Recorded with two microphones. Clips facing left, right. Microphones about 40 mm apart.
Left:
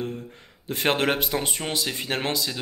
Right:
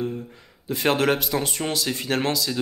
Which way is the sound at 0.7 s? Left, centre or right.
Left.